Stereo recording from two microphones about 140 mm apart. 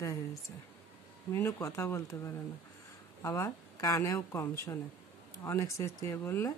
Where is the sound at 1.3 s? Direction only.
20° left (ahead or behind).